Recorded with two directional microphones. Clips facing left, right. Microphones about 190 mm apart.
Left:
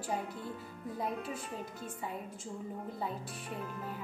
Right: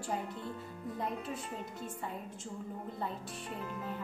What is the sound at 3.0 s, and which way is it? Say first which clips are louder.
Speech: left 1 dB; 5° left (ahead or behind).